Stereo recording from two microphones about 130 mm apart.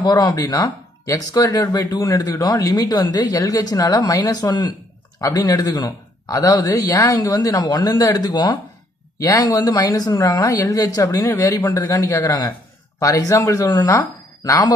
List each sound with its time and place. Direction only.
0.0 s a man's voice: 30° left (ahead or behind)